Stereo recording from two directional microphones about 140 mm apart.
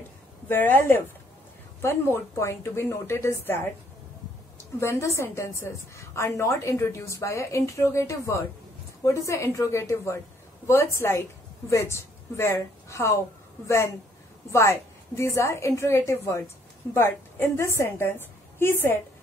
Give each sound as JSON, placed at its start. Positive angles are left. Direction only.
{"t": 0.5, "sound": "a woman's voice", "side_deg": 15}
{"t": 4.7, "sound": "a woman's voice", "side_deg": 20}